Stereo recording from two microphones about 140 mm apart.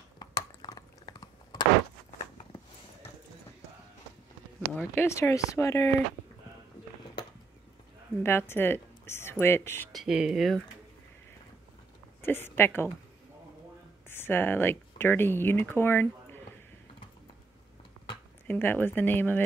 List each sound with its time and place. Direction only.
0.2 s a sound: 30° left (ahead or behind)
4.7 s speech: 15° left (ahead or behind)
8.2 s speech: 15° left (ahead or behind)
9.9 s speech: 5° right (ahead or behind)
12.2 s a woman's voice: 15° left (ahead or behind)
14.0 s speech: 15° left (ahead or behind)
18.5 s speech: 15° left (ahead or behind)